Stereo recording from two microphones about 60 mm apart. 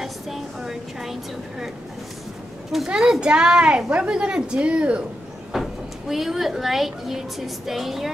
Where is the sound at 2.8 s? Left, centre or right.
Centre.